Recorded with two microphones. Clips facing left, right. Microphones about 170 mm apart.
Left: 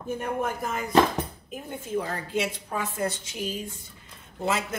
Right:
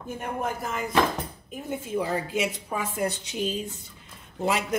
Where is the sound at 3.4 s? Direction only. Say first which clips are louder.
Right 3 dB; 20° right (ahead or behind).